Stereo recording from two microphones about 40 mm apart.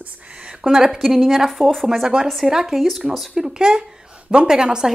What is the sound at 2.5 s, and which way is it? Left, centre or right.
A woman's voice, centre.